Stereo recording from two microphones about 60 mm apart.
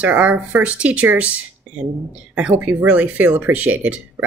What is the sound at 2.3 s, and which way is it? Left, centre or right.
Speech, centre.